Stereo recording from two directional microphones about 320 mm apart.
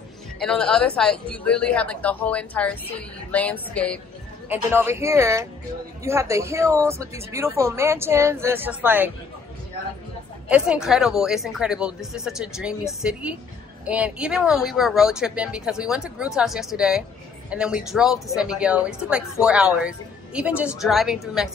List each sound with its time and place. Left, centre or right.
0.4 s a woman's voice: centre
4.5 s speech: centre
10.5 s a woman's voice: centre